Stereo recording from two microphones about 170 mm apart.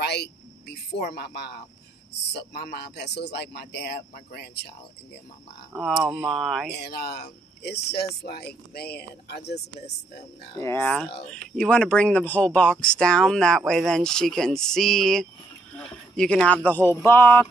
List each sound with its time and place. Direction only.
0.0 s a sound: 80° left
2.3 s speech: 70° left (ahead or behind)
5.7 s speech: centre (ahead or behind)
6.7 s speech: 70° left (ahead or behind)
10.6 s speech: 15° left (ahead or behind)